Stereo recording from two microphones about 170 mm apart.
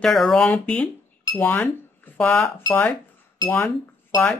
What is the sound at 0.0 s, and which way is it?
Speech, centre (ahead or behind).